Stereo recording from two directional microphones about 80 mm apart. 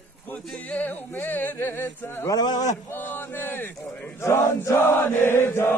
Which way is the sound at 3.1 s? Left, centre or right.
Left.